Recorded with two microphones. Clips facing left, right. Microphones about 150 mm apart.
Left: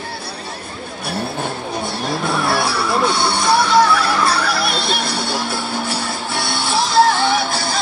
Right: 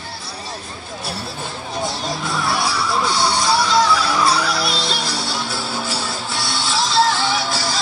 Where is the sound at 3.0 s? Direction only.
60° left (ahead or behind).